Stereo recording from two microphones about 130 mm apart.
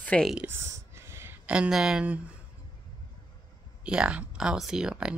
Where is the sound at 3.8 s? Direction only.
10° right (ahead or behind).